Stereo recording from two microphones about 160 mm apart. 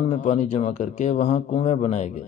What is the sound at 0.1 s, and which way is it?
Speech, 45° left (ahead or behind).